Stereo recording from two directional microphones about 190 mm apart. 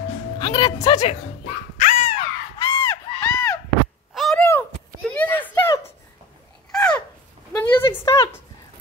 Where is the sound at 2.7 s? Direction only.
10° left (ahead or behind).